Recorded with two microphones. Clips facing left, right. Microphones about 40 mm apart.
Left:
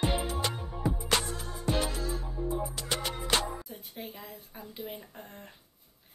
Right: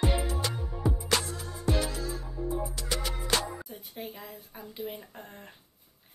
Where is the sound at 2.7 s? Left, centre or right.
Left.